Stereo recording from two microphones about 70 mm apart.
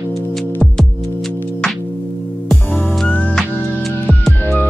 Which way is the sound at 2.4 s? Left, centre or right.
Centre.